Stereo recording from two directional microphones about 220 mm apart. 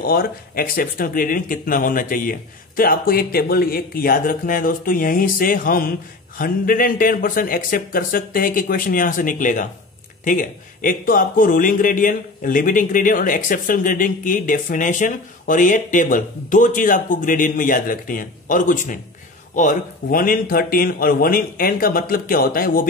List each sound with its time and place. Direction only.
0.0 s speech: 40° left (ahead or behind)